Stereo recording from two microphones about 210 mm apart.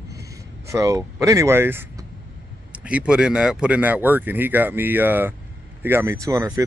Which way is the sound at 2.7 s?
5° right (ahead or behind).